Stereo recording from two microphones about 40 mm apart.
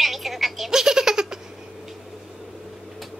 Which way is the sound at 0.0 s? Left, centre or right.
Centre.